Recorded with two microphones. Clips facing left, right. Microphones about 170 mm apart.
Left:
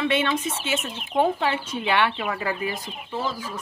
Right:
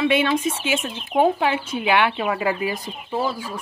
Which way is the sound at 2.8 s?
40° right (ahead or behind).